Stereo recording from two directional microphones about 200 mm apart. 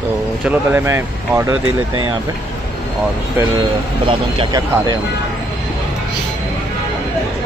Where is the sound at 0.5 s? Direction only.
10° right (ahead or behind).